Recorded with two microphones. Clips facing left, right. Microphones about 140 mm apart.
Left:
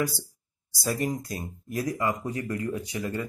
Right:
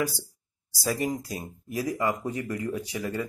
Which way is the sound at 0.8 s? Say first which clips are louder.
Even; 5° right (ahead or behind).